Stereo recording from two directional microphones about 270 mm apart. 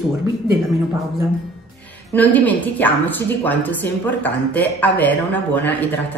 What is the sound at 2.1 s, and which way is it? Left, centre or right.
A woman's voice, centre.